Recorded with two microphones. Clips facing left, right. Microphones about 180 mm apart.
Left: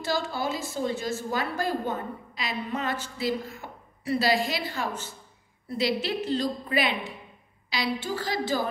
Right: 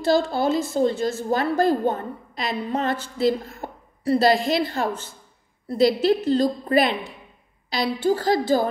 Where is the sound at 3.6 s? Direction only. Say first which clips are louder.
Right 7 dB; 50° right (ahead or behind).